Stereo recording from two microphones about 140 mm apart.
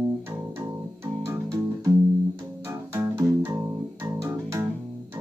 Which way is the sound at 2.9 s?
15° right (ahead or behind).